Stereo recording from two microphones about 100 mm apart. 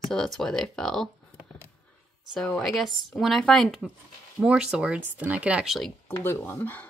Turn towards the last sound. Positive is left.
turn(degrees=25)  # may be behind; listen again after turning